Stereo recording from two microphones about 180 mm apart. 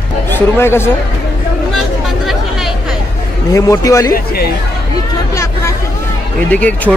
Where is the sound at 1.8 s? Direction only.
Centre (ahead or behind).